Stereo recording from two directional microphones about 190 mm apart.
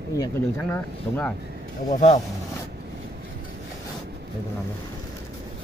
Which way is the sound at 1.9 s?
35° left (ahead or behind).